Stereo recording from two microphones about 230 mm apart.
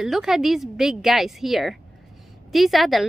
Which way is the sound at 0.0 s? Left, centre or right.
Centre.